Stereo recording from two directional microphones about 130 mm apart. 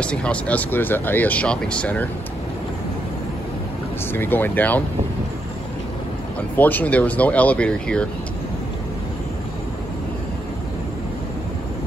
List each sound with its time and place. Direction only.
0.0 s speech: 10° left (ahead or behind)
4.1 s speech: 15° left (ahead or behind)
6.5 s speech: 15° left (ahead or behind)